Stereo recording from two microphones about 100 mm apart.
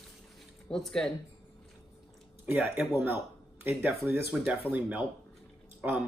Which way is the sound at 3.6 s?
25° right (ahead or behind).